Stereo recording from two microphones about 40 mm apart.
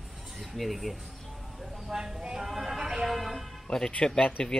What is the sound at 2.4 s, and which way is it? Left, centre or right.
Music, centre.